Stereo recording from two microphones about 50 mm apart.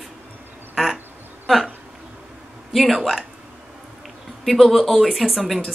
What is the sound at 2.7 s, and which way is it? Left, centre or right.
Speech, centre.